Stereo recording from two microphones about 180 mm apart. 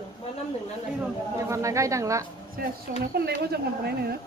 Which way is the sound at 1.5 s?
15° right (ahead or behind).